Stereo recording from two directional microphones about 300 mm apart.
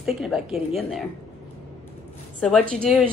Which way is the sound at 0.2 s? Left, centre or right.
Centre.